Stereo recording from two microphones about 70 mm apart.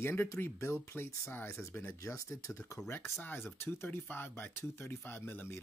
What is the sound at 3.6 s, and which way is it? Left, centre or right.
Speech, left.